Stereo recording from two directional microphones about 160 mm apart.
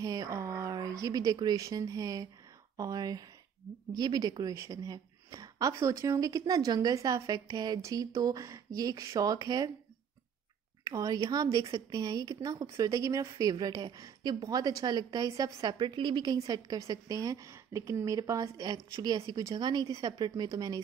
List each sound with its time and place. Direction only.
0.0 s a woman's voice: 20° right (ahead or behind)
10.8 s a woman's voice: 20° right (ahead or behind)